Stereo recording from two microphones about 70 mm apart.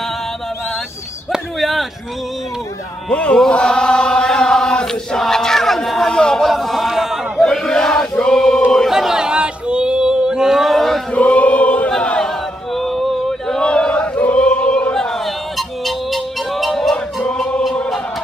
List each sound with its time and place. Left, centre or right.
1.6 s a sound: centre
3.1 s chant: centre
6.5 s a sound: centre
7.3 s chant: centre
8.9 s a sound: centre
11.1 s choir: centre
11.9 s chant: centre
12.7 s choir: centre
15.0 s music: centre
17.2 s music: centre